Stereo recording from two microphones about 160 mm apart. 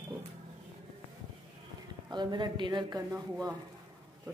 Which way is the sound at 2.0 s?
30° right (ahead or behind).